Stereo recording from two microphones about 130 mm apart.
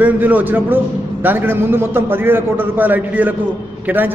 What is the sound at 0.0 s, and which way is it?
A man's voice, 15° right (ahead or behind).